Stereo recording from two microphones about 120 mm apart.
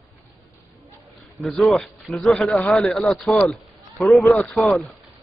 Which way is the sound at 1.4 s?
Centre (ahead or behind).